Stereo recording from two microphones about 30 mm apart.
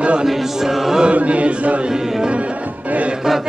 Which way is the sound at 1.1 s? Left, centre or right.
Right.